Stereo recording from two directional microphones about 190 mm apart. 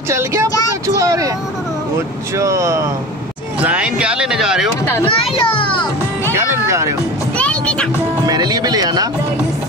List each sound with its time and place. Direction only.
0.1 s speech: 15° right (ahead or behind)
0.8 s vehicle: 15° right (ahead or behind)
2.3 s speech: 15° right (ahead or behind)
5.0 s a child's voice: 25° left (ahead or behind)
6.3 s speech: 15° right (ahead or behind)
7.3 s music: 5° left (ahead or behind)
8.3 s speech: 20° right (ahead or behind)